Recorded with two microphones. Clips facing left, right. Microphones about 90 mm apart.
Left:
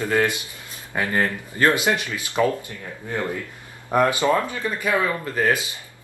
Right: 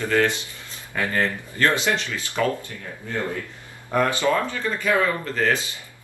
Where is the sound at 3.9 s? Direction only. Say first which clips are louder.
Left 2 dB; 15° left (ahead or behind).